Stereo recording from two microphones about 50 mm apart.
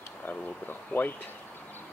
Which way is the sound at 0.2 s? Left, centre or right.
Left.